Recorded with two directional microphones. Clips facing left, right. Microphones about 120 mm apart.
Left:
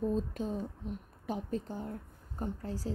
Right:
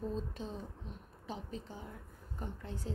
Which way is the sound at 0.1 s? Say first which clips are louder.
Left 7 dB; 45° left (ahead or behind).